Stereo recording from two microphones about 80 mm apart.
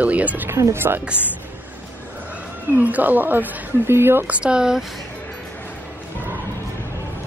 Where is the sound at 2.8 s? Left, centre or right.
Centre.